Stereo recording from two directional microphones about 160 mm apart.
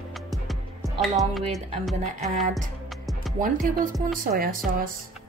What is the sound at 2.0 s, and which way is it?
Music, 50° right (ahead or behind).